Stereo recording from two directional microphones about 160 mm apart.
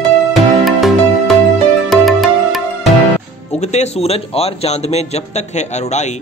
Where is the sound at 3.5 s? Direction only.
40° left (ahead or behind).